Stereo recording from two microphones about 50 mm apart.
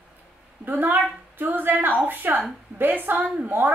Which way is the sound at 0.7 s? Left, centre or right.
Right.